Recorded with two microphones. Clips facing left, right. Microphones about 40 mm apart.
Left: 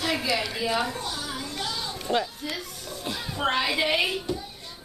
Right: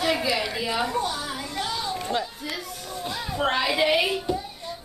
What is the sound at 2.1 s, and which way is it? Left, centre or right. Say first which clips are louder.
Speech: left 3 dB; left.